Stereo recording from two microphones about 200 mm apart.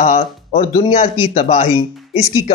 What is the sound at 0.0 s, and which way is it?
Speech, 35° left (ahead or behind).